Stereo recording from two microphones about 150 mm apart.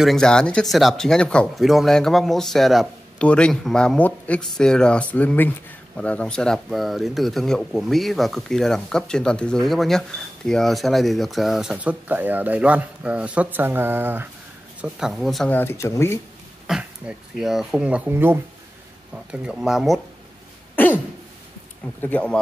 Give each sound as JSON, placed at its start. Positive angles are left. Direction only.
{"t": 0.0, "sound": "speech", "side_deg": 5}
{"t": 15.5, "sound": "speech", "side_deg": 15}
{"t": 16.7, "sound": "speech", "side_deg": -5}
{"t": 20.8, "sound": "throat clearing", "side_deg": 15}
{"t": 22.0, "sound": "speech", "side_deg": 10}